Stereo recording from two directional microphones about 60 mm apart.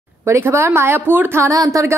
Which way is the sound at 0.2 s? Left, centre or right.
Right.